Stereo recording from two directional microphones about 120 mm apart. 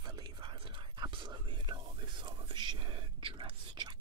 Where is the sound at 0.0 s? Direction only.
35° right (ahead or behind).